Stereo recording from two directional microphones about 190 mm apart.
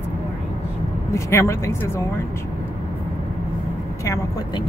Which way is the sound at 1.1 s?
15° left (ahead or behind).